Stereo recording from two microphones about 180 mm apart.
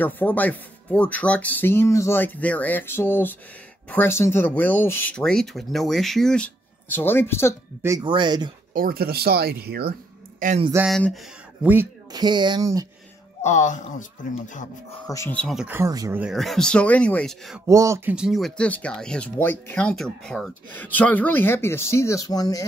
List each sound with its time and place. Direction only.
0.0 s speech: 10° left (ahead or behind)
8.0 s speech: 25° right (ahead or behind)
8.7 s speech: 55° right (ahead or behind)
10.4 s speech: 50° right (ahead or behind)
10.9 s speech: 5° left (ahead or behind)
11.6 s speech: 10° right (ahead or behind)
12.1 s speech: 25° right (ahead or behind)
13.4 s speech: 40° left (ahead or behind)
15.0 s speech: 15° left (ahead or behind)
15.7 s speech: 15° right (ahead or behind)
16.2 s speech: centre (ahead or behind)
17.6 s speech: 15° right (ahead or behind)
18.1 s speech: centre (ahead or behind); by 22.7 s 20° left (ahead or behind)